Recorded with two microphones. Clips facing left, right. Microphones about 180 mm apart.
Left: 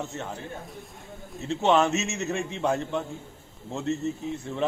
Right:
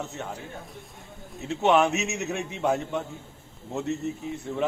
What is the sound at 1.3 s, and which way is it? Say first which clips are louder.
A man's voice: right 1 dB; centre (ahead or behind).